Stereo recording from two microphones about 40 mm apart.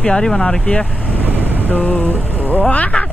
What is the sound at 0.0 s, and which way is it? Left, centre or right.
Speech, centre.